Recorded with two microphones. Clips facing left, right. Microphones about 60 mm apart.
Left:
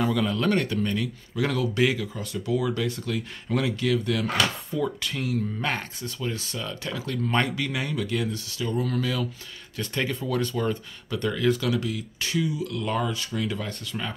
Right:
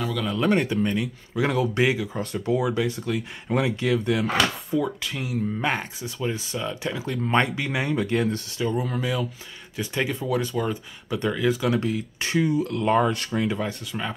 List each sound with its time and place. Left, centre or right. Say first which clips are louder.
0.0 s speech: left 3 dB; centre
0.5 s speech: right 2 dB; centre
2.1 s speech: right 3 dB; right
2.6 s speech: right 3 dB; centre
3.4 s speech: right 2 dB; right
4.6 s speech: right 2 dB; centre; by 8.6 s right
8.6 s speech: right 1 dB; centre
11.6 s speech: right 3 dB; right
13.7 s speech: right 3 dB; centre